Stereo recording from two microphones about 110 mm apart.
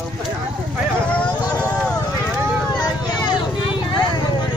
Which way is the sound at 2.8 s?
40° left (ahead or behind).